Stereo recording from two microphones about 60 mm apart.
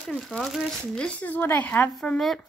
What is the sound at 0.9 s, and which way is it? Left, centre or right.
Speech, centre.